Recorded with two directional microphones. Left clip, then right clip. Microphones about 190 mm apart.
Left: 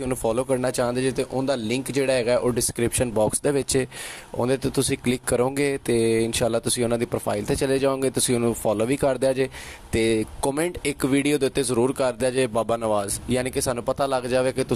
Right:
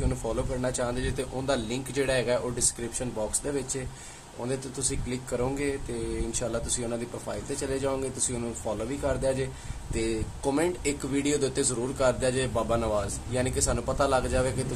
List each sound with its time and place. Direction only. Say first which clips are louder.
0.1 s speech: left 8 dB; 55° left (ahead or behind)
3.0 s speech: left 11 dB; 55° left (ahead or behind)